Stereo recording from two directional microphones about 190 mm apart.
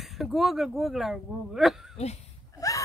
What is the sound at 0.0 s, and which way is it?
Speech, centre (ahead or behind).